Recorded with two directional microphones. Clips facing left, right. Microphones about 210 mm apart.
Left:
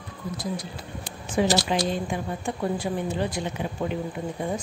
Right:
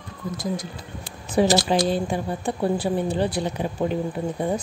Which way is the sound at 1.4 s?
35° right (ahead or behind).